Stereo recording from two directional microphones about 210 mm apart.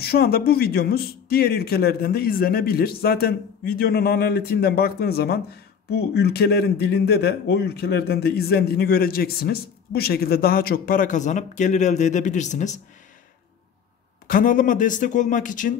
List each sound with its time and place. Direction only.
0.0 s speech: 45° left (ahead or behind)
14.2 s speech: 40° left (ahead or behind)